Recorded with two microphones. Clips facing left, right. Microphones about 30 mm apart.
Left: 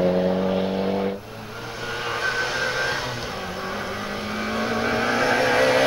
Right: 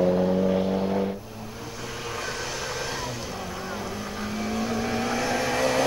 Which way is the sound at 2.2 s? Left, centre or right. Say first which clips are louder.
Left 10 dB; left.